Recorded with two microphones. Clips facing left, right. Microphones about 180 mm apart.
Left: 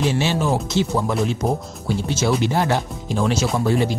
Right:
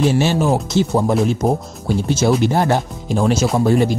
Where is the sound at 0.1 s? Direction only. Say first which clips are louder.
Right 4 dB; 45° right (ahead or behind).